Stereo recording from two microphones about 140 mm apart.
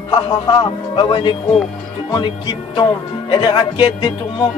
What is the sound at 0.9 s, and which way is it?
Music, 35° left (ahead or behind).